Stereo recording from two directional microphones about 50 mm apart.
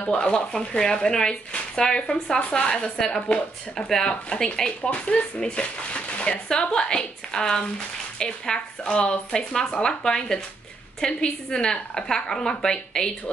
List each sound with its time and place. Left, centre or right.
0.2 s speech: centre